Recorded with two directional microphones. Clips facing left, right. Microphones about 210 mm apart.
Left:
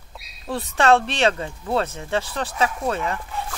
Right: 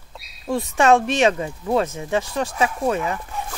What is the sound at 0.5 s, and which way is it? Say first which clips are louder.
Speech: right 2 dB; 15° right (ahead or behind).